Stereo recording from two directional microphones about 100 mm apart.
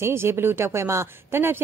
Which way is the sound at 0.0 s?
25° right (ahead or behind).